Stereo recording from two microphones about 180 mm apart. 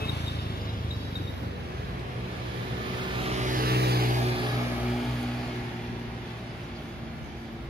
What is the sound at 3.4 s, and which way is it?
Vehicle, 50° right (ahead or behind).